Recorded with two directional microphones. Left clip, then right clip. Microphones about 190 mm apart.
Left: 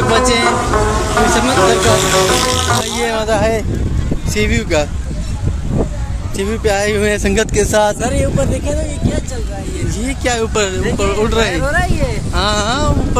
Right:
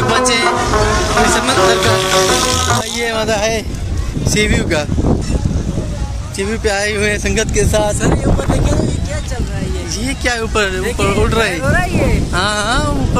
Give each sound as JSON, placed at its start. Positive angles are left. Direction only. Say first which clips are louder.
{"t": 0.0, "sound": "speech", "louder": "left 1 dB", "side_deg": 5}
{"t": 3.2, "sound": "speech", "louder": "left 1 dB", "side_deg": -20}
{"t": 4.3, "sound": "speech", "louder": "right 1 dB", "side_deg": 0}
{"t": 6.3, "sound": "speech", "louder": "left 1 dB", "side_deg": 10}
{"t": 7.2, "sound": "speech", "louder": "left 1 dB", "side_deg": 50}
{"t": 10.0, "sound": "speech", "louder": "left 1 dB", "side_deg": 10}
{"t": 11.6, "sound": "speech", "louder": "even", "side_deg": 20}
{"t": 12.4, "sound": "speech", "louder": "left 1 dB", "side_deg": 0}